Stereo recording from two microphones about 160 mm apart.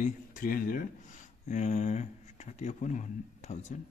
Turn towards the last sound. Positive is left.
turn(degrees=50)  # may be behind; listen again after turning